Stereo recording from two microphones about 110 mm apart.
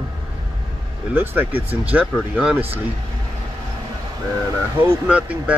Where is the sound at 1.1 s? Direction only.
20° right (ahead or behind).